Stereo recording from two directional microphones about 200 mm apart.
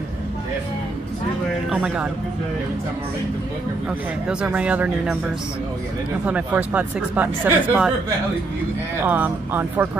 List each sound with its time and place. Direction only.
1.7 s a man's voice: 5° right (ahead or behind)
4.3 s speech: 5° right (ahead or behind)
6.2 s speech: 5° right (ahead or behind)
9.0 s speech: 10° right (ahead or behind)